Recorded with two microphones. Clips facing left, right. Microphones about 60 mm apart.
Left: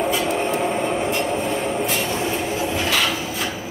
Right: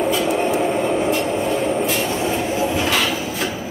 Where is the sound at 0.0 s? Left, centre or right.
Centre.